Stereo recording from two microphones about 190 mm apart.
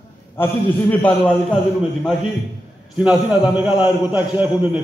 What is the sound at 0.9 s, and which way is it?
Speech, 5° left (ahead or behind).